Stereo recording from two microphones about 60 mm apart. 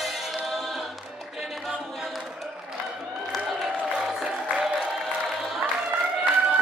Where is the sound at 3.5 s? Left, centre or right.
Centre.